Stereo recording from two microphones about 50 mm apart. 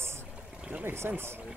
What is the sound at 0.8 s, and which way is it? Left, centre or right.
Speech, right.